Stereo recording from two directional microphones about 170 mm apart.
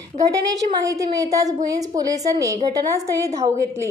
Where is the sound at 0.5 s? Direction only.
20° right (ahead or behind).